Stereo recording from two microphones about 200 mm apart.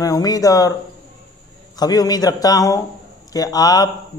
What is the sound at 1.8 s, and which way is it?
A man's voice, 20° left (ahead or behind).